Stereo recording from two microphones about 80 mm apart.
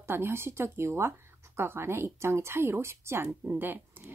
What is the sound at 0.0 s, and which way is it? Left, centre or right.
A woman's voice, right.